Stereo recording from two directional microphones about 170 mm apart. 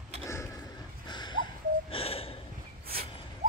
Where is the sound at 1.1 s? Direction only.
25° left (ahead or behind).